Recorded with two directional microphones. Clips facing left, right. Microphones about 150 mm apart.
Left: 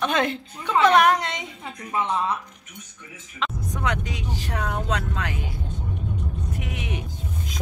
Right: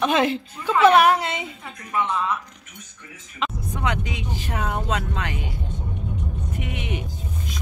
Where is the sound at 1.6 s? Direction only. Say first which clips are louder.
Even; 30° left (ahead or behind).